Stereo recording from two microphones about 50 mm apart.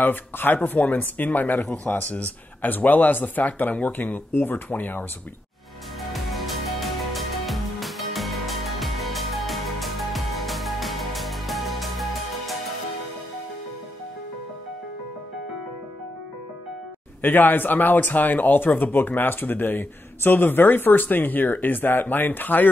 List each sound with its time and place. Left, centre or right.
0.0 s speech: left
0.7 s speech: left
6.1 s music: centre
17.2 s speech: left